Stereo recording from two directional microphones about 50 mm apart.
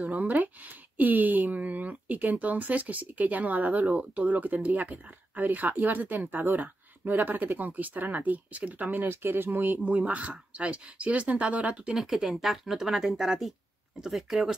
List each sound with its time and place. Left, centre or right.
0.0 s speech: right
10.1 s speech: right
11.9 s speech: centre